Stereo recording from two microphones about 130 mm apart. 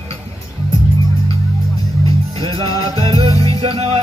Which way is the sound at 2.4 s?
40° right (ahead or behind).